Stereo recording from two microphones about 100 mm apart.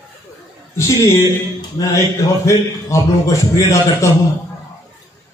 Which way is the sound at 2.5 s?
30° left (ahead or behind).